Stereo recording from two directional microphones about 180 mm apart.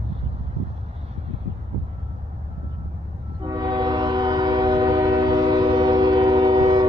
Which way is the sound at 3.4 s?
25° right (ahead or behind).